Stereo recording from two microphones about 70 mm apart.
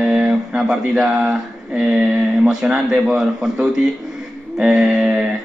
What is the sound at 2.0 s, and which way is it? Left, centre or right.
Speech, right.